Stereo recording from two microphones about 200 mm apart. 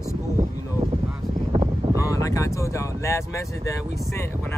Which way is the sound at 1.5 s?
30° right (ahead or behind).